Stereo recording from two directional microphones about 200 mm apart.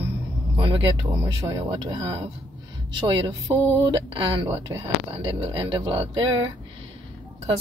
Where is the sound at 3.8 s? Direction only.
25° right (ahead or behind).